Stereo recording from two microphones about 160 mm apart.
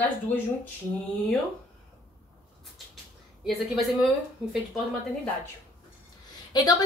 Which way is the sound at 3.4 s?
Centre (ahead or behind).